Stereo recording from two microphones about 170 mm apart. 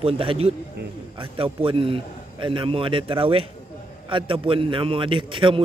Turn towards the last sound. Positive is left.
turn(degrees=-30)  # may be behind; listen again after turning